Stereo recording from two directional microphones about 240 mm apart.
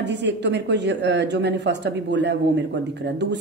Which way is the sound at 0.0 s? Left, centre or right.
Right.